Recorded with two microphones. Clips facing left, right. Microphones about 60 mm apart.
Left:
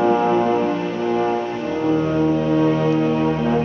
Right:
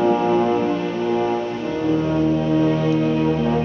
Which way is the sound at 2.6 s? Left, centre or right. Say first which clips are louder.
Left 1 dB; centre.